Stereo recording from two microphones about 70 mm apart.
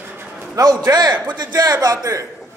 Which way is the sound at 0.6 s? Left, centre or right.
Right.